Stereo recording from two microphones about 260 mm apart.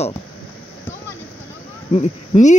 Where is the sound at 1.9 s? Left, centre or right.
Left.